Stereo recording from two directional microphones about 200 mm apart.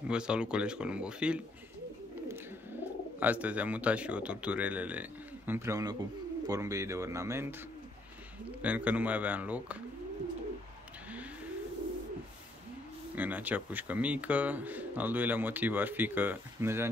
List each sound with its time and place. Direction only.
0.1 s speech: 5° right (ahead or behind)
3.2 s speech: 5° right (ahead or behind)
8.5 s speech: 5° right (ahead or behind)
13.1 s speech: 10° right (ahead or behind)